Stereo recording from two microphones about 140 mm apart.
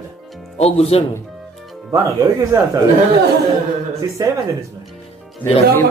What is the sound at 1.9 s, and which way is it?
Speech, 20° right (ahead or behind).